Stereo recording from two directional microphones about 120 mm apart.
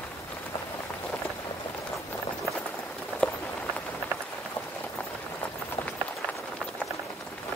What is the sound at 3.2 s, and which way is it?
Rain on surface, 10° left (ahead or behind).